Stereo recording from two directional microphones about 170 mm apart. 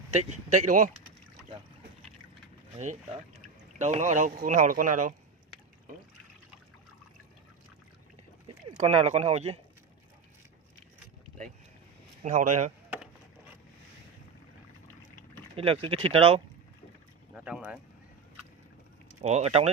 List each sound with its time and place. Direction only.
0.1 s speech: 40° right (ahead or behind)
3.7 s speech: 45° right (ahead or behind)
8.8 s speech: 40° right (ahead or behind)
12.2 s speech: 45° right (ahead or behind)
15.5 s speech: 35° right (ahead or behind)
17.3 s speech: 10° right (ahead or behind)
19.2 s speech: 40° right (ahead or behind)